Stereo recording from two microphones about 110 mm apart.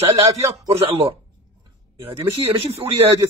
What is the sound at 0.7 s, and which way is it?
Speech, 65° right (ahead or behind).